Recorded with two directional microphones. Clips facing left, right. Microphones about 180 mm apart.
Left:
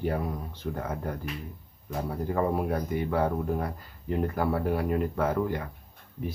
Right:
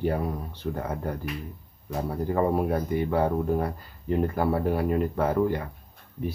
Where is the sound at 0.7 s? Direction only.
30° right (ahead or behind).